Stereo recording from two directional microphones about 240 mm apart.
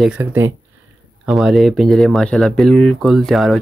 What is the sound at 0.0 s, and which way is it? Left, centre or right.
Speech, centre.